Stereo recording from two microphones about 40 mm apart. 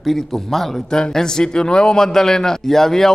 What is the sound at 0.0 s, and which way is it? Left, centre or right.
Speech, centre.